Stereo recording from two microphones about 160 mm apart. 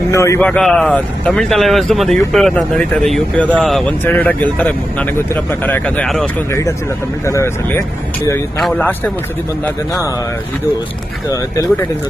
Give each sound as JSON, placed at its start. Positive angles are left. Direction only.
{"t": 0.1, "sound": "a man's voice", "side_deg": 20}
{"t": 0.4, "sound": "speech", "side_deg": 5}
{"t": 7.2, "sound": "speech", "side_deg": 15}
{"t": 8.5, "sound": "speech", "side_deg": 5}